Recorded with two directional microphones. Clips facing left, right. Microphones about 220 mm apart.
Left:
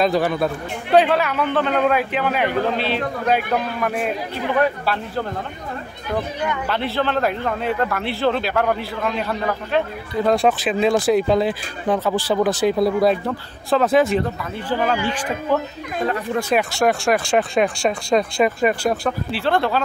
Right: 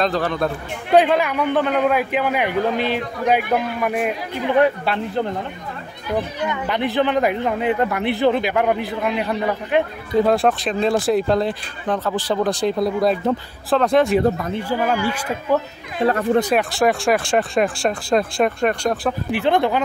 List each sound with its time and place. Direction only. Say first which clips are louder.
0.0 s speech: left 2 dB; 10° left (ahead or behind)
0.9 s a man's voice: right 1 dB; 15° right (ahead or behind)
6.5 s speech: right 4 dB; 15° right (ahead or behind)
10.2 s speech: left 4 dB; centre (ahead or behind)
14.7 s speech: left 1 dB; 10° right (ahead or behind)
16.0 s a man's voice: right 4 dB; 30° right (ahead or behind)
16.5 s speech: right 1 dB; centre (ahead or behind)
19.3 s speech: right 3 dB; 15° right (ahead or behind)